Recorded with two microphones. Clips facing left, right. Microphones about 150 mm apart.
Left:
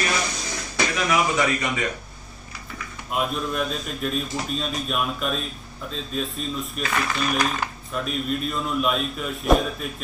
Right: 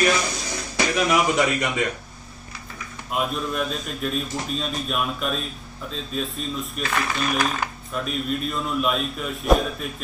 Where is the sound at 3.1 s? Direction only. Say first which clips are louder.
Even; centre (ahead or behind).